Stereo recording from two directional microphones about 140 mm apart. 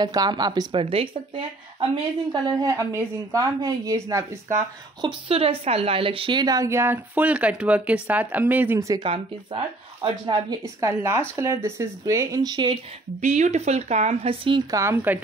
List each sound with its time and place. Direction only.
0.0 s speech: 30° right (ahead or behind)
2.4 s a woman's voice: 25° right (ahead or behind)
5.0 s speech: 45° right (ahead or behind); by 8.7 s 10° right (ahead or behind)
8.7 s a woman's voice: 25° right (ahead or behind)
9.0 s speech: 40° right (ahead or behind)
10.8 s a woman's voice: 20° right (ahead or behind)
13.2 s speech: 55° right (ahead or behind); by 14.6 s 40° right (ahead or behind)
14.7 s a woman's voice: 20° right (ahead or behind)